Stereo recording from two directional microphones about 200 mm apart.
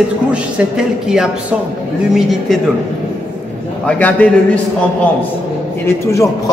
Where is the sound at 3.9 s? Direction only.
10° left (ahead or behind).